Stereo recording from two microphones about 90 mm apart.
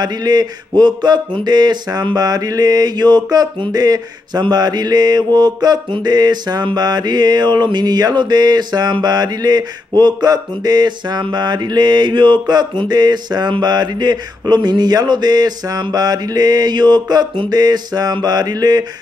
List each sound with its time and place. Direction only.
0.0 s mantra: 50° right (ahead or behind)